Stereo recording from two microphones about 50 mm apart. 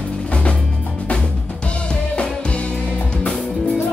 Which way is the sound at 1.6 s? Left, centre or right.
Left.